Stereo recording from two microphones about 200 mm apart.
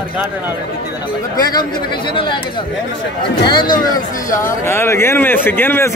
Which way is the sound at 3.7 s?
20° left (ahead or behind).